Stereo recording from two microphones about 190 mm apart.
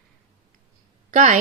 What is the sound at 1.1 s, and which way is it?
Speech, 40° right (ahead or behind).